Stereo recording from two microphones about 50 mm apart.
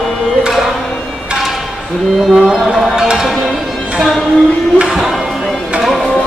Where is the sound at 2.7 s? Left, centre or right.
Centre.